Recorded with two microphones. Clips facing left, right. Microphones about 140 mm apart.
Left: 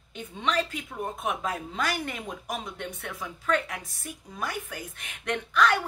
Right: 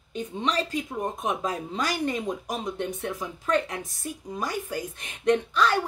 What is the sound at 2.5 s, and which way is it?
Speech, 25° right (ahead or behind).